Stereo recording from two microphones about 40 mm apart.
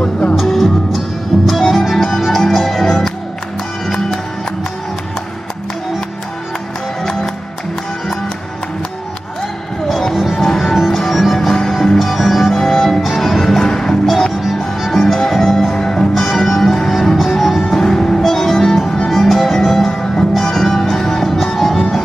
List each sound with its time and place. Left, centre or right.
0.0 s music: left
0.5 s music: centre
7.0 s music: centre
9.8 s music: centre
13.6 s music: centre
17.8 s music: centre